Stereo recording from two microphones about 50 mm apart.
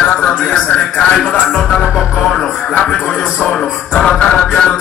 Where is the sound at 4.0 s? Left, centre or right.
Centre.